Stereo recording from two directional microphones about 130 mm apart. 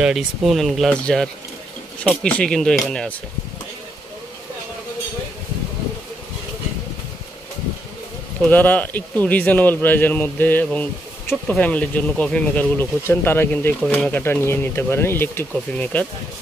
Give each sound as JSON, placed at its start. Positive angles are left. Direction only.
{"t": 0.0, "sound": "speech", "side_deg": -5}
{"t": 8.5, "sound": "speech", "side_deg": 10}